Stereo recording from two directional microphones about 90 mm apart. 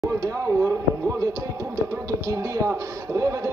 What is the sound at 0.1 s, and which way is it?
Speech, 35° right (ahead or behind).